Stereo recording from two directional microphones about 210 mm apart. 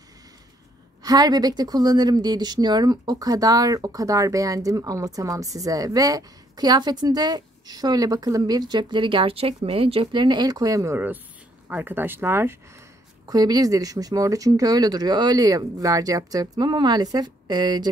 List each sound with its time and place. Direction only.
1.0 s speech: 20° right (ahead or behind)